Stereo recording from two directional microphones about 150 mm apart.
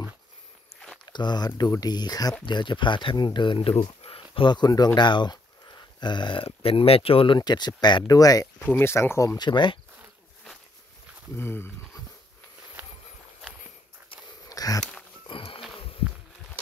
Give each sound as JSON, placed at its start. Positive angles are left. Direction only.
{"t": 1.0, "sound": "speech", "side_deg": 30}
{"t": 8.5, "sound": "speech", "side_deg": 10}
{"t": 9.4, "sound": "speech", "side_deg": 30}
{"t": 11.3, "sound": "speech", "side_deg": 15}
{"t": 14.5, "sound": "a sound", "side_deg": 25}
{"t": 15.2, "sound": "music", "side_deg": 35}